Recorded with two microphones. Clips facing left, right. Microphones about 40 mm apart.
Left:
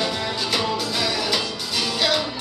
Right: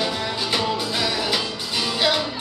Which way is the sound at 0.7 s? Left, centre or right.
Centre.